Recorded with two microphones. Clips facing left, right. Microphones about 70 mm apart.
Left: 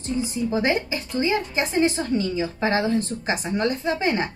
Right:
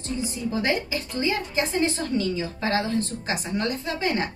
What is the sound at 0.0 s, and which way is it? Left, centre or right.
A woman's voice, left.